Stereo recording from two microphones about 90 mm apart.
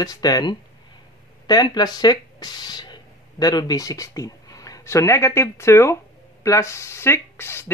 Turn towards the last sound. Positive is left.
turn(degrees=25)  # may be behind; listen again after turning